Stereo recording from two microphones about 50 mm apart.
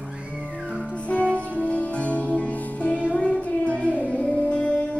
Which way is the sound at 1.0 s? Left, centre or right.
Left.